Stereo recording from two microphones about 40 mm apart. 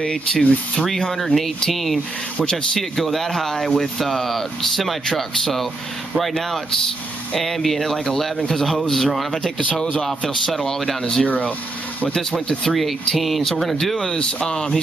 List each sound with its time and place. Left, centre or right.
0.0 s speech: left
1.1 s speech: centre
3.0 s speech: centre
10.4 s speech: centre
11.2 s speech: left
12.2 s speech: centre
12.7 s speech: centre
13.9 s speech: centre